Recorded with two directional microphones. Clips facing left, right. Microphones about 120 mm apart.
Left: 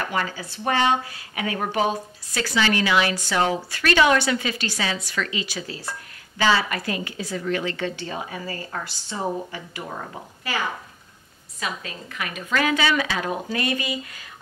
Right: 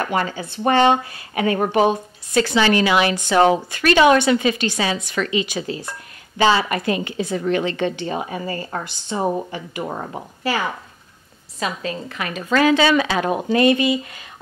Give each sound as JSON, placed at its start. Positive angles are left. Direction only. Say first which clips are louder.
{"t": 0.0, "sound": "speech", "louder": "right 5 dB", "side_deg": -30}
{"t": 1.7, "sound": "a woman's voice", "louder": "right 6 dB", "side_deg": -25}
{"t": 9.8, "sound": "speech", "louder": "right 6 dB", "side_deg": -30}
{"t": 11.8, "sound": "a woman's voice", "louder": "right 6 dB", "side_deg": -30}